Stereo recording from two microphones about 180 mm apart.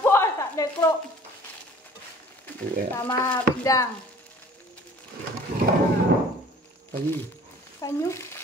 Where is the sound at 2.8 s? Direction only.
10° left (ahead or behind).